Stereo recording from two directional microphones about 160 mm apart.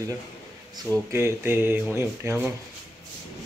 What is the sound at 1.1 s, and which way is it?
Speech, 15° right (ahead or behind).